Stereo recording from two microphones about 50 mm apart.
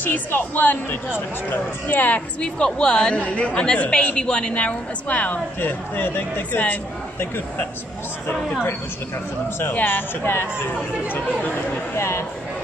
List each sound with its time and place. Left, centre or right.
0.0 s speech: left
2.4 s a woman's voice: centre
5.6 s speech: left
9.8 s speech: left
11.4 s speech: left
12.0 s speech: left